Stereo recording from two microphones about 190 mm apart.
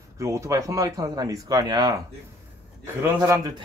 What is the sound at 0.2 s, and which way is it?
Speech, 15° right (ahead or behind).